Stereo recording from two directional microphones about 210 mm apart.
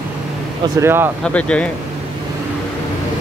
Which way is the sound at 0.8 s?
10° right (ahead or behind).